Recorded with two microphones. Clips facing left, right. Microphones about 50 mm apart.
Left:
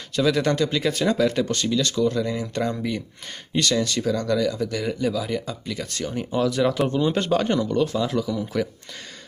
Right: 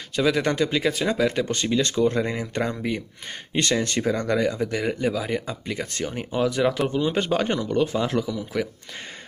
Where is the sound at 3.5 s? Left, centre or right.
Right; by 8.7 s centre.